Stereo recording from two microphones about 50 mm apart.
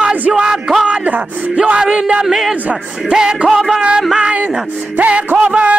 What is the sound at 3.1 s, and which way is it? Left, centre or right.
Speech, centre.